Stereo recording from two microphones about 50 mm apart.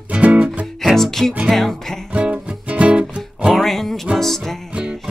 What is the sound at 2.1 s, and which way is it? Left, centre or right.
Music, right.